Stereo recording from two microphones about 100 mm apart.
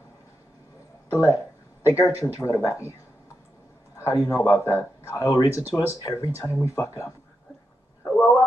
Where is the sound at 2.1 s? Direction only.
30° left (ahead or behind).